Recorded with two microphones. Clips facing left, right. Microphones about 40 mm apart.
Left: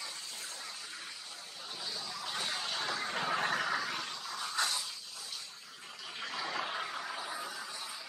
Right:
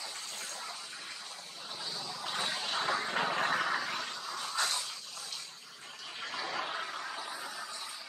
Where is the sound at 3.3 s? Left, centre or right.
Centre.